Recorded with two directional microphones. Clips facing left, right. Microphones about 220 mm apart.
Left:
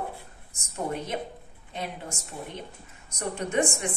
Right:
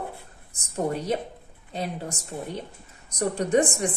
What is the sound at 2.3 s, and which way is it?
A woman's voice, 35° right (ahead or behind).